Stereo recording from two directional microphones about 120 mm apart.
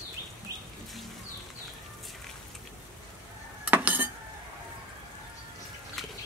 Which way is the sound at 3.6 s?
15° right (ahead or behind).